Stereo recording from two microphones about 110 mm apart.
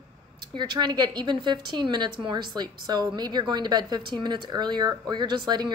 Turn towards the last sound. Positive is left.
turn(degrees=-40)  # may be behind; listen again after turning